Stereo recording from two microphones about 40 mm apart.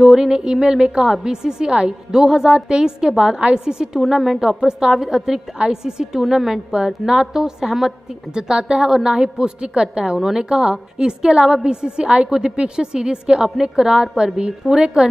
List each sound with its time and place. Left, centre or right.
0.0 s a woman's voice: centre
4.0 s speech: centre
4.4 s a woman's voice: centre
6.2 s a woman's voice: centre